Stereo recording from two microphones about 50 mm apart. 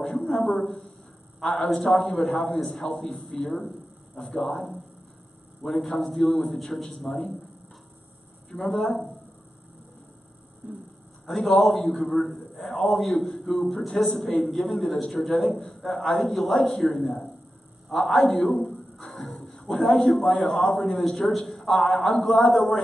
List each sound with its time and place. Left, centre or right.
0.0 s a man's voice: centre
8.5 s a man's voice: centre
10.6 s a sound: right
11.2 s a man's voice: centre